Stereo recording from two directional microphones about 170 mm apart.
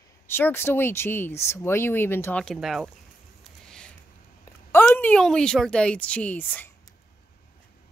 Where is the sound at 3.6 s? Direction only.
5° left (ahead or behind).